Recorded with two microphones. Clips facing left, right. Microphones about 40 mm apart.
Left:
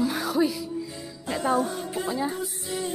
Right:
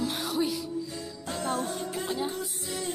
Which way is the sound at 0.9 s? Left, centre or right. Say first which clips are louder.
Left 4 dB; centre.